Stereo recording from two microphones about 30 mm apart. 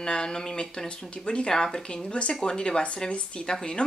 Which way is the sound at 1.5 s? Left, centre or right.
Centre.